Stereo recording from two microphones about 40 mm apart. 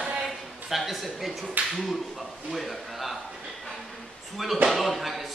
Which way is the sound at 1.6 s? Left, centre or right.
Right.